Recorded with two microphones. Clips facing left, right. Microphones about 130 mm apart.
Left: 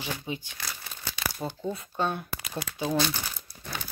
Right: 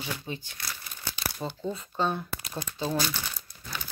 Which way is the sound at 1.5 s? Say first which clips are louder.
Left 1 dB; 10° left (ahead or behind).